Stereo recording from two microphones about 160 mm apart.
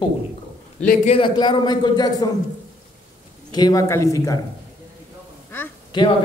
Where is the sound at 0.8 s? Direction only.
45° left (ahead or behind).